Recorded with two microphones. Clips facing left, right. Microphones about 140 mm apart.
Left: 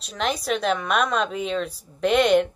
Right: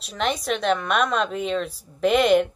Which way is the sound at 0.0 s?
Centre (ahead or behind).